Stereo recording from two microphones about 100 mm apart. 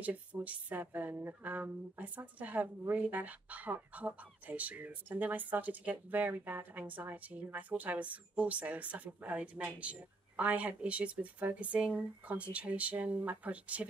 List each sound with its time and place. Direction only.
0.0 s speech: 15° right (ahead or behind)